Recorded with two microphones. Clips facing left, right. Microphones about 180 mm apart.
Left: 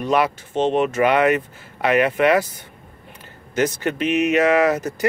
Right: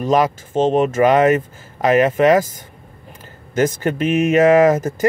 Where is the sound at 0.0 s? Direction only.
40° right (ahead or behind).